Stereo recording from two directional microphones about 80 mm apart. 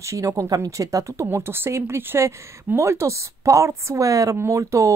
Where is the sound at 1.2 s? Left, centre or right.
Right.